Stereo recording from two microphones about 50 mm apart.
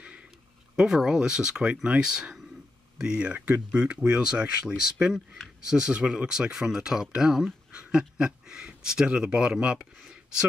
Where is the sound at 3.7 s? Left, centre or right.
Right.